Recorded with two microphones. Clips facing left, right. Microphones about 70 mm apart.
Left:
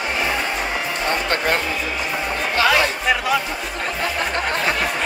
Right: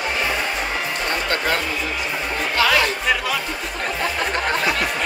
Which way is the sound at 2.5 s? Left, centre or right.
Left.